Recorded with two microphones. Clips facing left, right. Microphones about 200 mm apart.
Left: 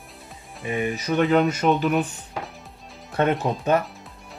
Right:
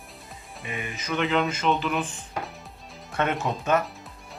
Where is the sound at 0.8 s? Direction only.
40° left (ahead or behind).